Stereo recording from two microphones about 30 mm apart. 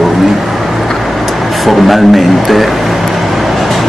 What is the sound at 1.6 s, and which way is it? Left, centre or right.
Speech, centre.